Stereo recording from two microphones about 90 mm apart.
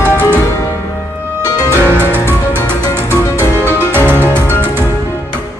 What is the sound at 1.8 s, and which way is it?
Music, 20° right (ahead or behind).